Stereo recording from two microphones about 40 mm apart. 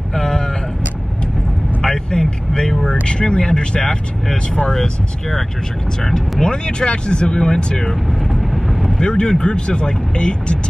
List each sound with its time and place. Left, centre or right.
0.1 s a sound: centre
2.0 s vehicle: centre
6.4 s speech: left
7.3 s speech: centre
9.0 s speech: left